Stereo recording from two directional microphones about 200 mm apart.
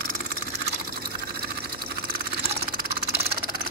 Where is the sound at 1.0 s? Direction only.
50° right (ahead or behind).